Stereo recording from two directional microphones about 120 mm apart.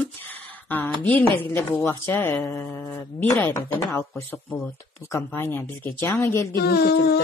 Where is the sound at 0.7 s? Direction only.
15° left (ahead or behind).